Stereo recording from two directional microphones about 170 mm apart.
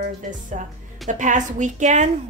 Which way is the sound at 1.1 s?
50° right (ahead or behind).